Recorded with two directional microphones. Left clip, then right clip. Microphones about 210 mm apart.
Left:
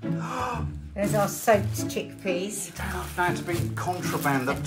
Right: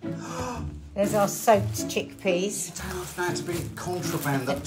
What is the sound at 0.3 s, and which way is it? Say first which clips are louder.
Speech: left 6 dB; centre (ahead or behind).